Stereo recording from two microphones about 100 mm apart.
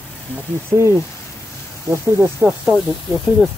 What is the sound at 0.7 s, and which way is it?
Speech, 30° right (ahead or behind).